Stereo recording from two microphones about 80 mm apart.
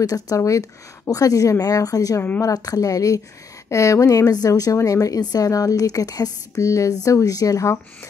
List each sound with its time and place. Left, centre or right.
0.0 s a woman's voice: left